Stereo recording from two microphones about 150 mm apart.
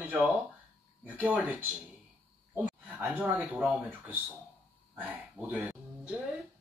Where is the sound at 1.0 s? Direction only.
10° right (ahead or behind).